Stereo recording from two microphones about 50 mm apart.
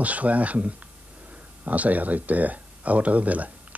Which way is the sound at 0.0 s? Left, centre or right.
Right.